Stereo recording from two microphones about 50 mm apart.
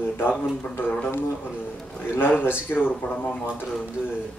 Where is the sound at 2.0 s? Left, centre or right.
Left.